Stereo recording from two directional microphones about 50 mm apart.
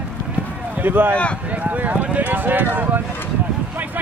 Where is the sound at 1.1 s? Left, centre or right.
Left.